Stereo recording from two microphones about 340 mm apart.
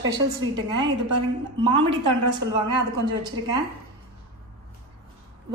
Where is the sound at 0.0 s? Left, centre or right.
Centre.